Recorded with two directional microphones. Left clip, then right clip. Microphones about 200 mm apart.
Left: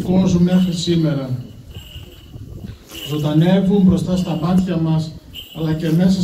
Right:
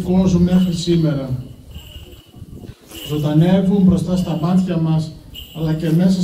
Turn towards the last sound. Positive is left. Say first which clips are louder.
# even
turn(degrees=-60)  # may be behind; listen again after turning